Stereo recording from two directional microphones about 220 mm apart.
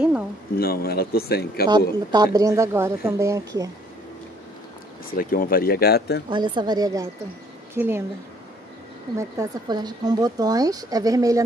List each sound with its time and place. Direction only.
0.6 s speech: 45° left (ahead or behind)
1.7 s speech: 15° right (ahead or behind)
5.1 s speech: 40° left (ahead or behind)
6.3 s a woman's voice: 20° right (ahead or behind)
9.1 s speech: 15° right (ahead or behind)